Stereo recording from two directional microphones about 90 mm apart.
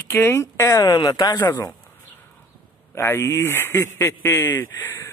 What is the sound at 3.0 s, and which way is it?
A man's voice, 25° left (ahead or behind).